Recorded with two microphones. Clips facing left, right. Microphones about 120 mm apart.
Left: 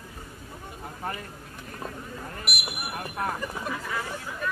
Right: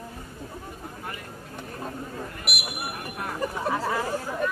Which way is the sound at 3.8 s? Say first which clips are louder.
Right 6 dB; 40° right (ahead or behind).